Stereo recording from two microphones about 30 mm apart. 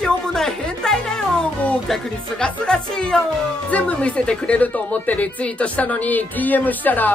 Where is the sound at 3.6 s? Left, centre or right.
Left.